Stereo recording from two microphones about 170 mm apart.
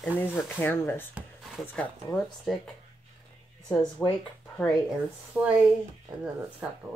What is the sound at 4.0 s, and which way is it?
Speech, 5° left (ahead or behind).